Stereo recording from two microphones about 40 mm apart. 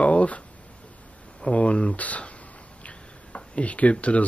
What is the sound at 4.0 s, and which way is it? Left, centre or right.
Speech, left.